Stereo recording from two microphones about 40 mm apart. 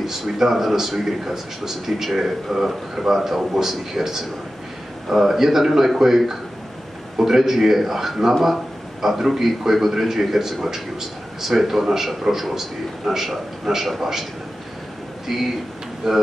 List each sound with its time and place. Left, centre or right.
0.0 s a man's voice: centre
15.3 s a man's voice: centre